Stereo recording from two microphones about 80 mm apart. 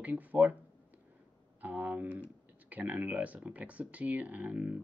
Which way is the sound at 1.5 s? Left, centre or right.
Right.